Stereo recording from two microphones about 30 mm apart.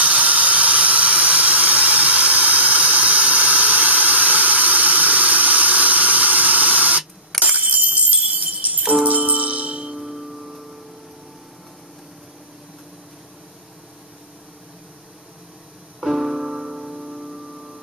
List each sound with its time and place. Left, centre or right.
0.0 s a sound: right
7.4 s bicycle bell: right
8.5 s jingle bell: right
9.8 s music: centre
16.0 s music: centre
16.4 s music: centre